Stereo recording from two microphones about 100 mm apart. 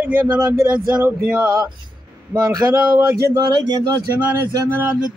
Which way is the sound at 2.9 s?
35° right (ahead or behind).